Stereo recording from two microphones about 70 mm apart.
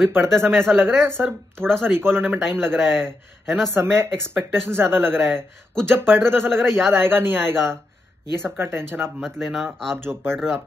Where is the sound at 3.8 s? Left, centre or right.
Right.